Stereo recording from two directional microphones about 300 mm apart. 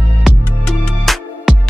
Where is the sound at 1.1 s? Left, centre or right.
Centre.